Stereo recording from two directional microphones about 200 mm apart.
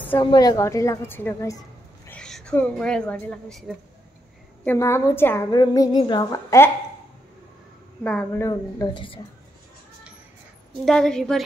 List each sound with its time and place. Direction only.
0.2 s a woman's voice: 20° left (ahead or behind); by 3.7 s centre (ahead or behind)
4.6 s a woman's voice: 15° left (ahead or behind)
8.0 s a woman's voice: 5° left (ahead or behind)
8.5 s speech: 20° left (ahead or behind)
10.9 s a woman's voice: 5° left (ahead or behind)